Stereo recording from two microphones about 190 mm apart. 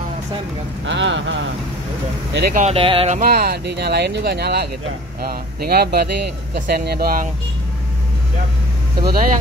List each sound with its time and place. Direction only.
0.8 s speech: 75° right (ahead or behind)
2.5 s speech: 35° right (ahead or behind)
3.2 s speech: 55° right (ahead or behind)
9.0 s speech: 50° right (ahead or behind)